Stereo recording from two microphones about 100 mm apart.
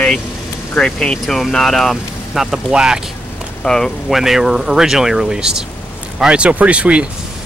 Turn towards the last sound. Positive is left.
turn(degrees=-10)  # may be behind; listen again after turning